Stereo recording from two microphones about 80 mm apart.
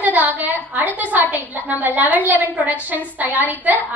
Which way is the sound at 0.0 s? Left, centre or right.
Right.